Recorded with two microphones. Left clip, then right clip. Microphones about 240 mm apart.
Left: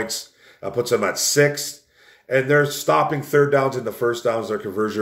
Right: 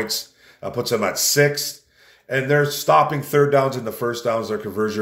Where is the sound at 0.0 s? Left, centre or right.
Centre.